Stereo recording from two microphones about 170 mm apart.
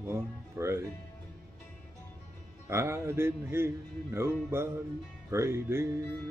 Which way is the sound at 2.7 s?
15° right (ahead or behind).